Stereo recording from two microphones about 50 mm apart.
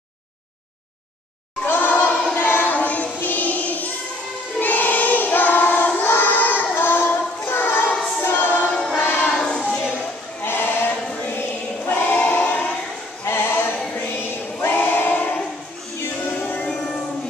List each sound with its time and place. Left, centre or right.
1.7 s a sound: left
2.3 s choir: left
2.7 s choir: left
3.2 s music: left
4.6 s choir: left
5.9 s child singing: left
8.2 s choir: left
9.4 s child singing: centre
10.4 s sheep: left
11.9 s choir: left
13.2 s sheep: left
14.6 s choir: left
16.3 s music: left
16.6 s music: centre